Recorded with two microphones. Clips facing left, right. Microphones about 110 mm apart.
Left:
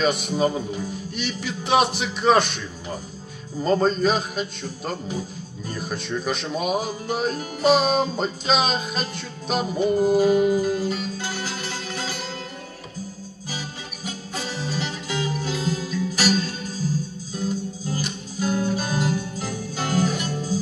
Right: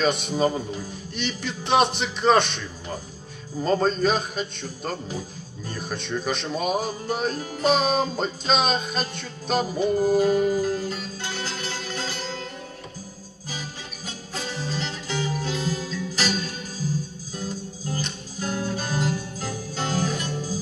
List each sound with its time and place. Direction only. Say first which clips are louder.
0.0 s speech: left 1 dB; 5° left (ahead or behind)
14.3 s music: left 1 dB; 5° left (ahead or behind)
17.9 s music: left 1 dB; 5° left (ahead or behind)